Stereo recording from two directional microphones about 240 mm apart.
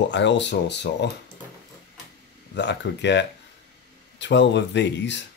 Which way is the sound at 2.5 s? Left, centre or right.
Left.